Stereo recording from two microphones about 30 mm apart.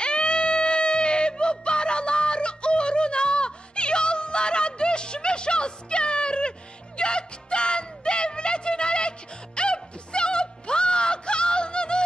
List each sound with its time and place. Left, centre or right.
0.0 s music: left